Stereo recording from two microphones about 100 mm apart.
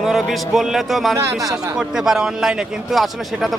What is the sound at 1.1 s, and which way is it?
Speech, 30° right (ahead or behind).